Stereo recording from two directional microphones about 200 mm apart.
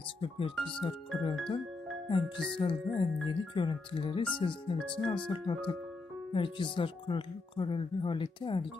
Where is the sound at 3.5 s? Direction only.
25° left (ahead or behind).